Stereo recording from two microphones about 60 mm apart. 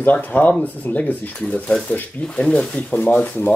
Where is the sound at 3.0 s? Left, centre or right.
Left.